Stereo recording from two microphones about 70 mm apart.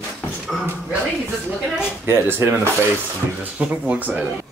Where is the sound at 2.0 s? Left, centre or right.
Right.